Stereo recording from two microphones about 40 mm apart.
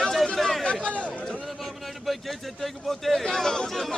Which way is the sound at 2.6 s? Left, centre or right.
Centre.